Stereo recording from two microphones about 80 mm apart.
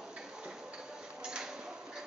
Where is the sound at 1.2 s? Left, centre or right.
Centre.